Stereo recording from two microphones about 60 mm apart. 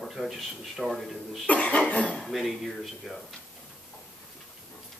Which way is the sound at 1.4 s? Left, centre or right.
Left.